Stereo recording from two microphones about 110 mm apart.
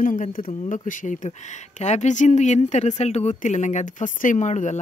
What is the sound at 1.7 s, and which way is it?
Speech, 90° left.